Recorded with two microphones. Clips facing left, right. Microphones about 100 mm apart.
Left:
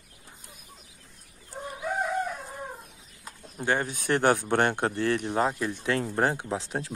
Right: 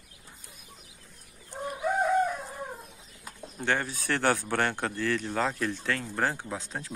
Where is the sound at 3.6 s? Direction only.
15° left (ahead or behind).